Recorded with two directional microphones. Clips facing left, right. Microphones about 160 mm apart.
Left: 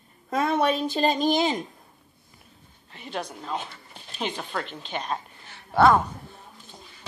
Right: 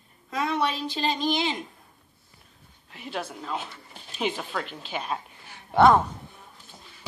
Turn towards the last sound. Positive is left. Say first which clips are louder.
# right 1 dB
turn(degrees=-15)  # may be behind; listen again after turning